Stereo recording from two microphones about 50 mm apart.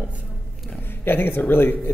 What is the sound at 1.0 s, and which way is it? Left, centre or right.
Speech, left.